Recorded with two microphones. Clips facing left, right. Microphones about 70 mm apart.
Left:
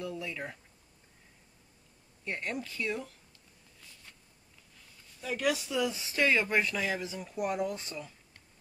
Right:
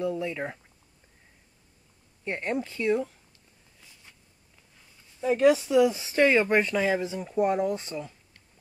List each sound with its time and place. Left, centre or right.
0.0 s speech: right
2.2 s speech: right
5.2 s speech: right